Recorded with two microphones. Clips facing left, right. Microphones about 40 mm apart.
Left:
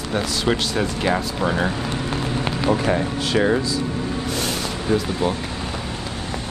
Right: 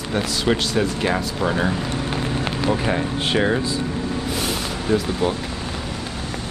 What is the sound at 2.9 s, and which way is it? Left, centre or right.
Speech, centre.